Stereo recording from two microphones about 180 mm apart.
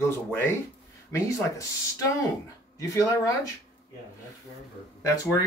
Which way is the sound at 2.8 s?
15° left (ahead or behind).